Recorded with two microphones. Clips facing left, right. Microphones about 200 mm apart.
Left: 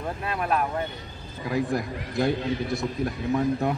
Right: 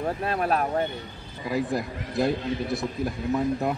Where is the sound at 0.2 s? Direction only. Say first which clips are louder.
Left 1 dB; 40° right (ahead or behind).